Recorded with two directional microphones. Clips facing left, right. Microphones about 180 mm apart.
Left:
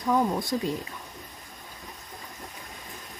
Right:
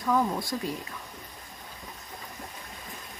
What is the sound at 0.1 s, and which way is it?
Speech, 20° left (ahead or behind).